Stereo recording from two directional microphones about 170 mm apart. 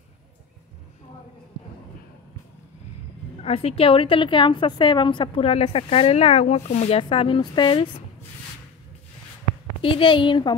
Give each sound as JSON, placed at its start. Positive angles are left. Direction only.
{"t": 3.4, "sound": "a woman's voice", "side_deg": 35}
{"t": 9.8, "sound": "speech", "side_deg": 30}